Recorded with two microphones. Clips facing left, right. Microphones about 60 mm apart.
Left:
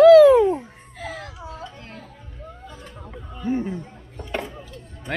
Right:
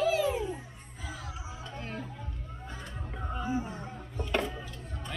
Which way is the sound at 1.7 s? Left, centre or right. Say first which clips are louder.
Right 1 dB; centre.